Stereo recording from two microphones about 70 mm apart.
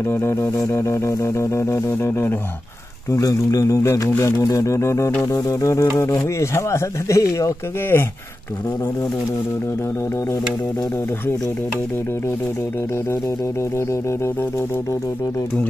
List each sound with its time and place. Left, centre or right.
0.1 s music: left
3.1 s speech: left
7.9 s music: left